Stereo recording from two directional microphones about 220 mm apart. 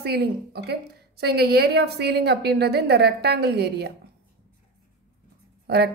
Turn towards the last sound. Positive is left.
turn(degrees=-45)  # may be behind; listen again after turning